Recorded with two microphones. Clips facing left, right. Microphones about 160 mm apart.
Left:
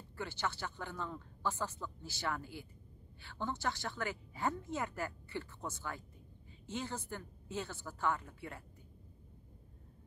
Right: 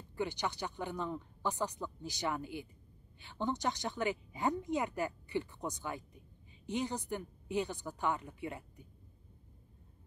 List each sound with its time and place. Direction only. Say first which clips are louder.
0.1 s a woman's voice: right 4 dB; 15° right (ahead or behind)